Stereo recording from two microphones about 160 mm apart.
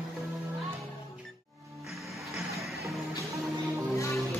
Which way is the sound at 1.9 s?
Centre (ahead or behind).